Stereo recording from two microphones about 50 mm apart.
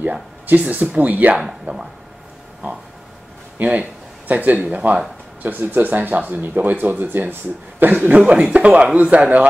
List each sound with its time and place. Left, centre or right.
0.0 s speech: right
3.5 s speech: right
5.4 s speech: right
8.3 s speech: right